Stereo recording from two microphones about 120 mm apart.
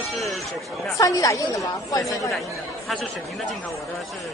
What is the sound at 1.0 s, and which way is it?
A woman's voice, 30° left (ahead or behind).